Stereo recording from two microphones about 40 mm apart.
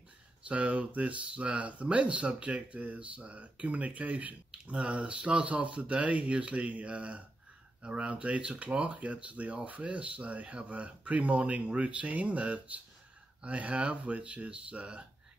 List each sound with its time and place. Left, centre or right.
0.5 s speech: right
4.6 s speech: right